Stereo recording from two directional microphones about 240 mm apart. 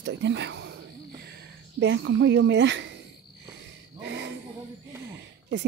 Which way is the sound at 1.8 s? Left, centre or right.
Right.